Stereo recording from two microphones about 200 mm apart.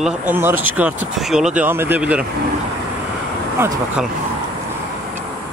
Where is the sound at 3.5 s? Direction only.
10° right (ahead or behind).